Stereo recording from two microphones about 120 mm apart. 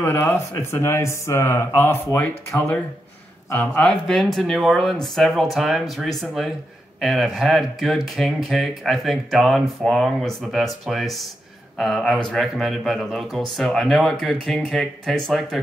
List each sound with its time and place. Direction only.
0.0 s speech: 20° left (ahead or behind); by 15.6 s centre (ahead or behind)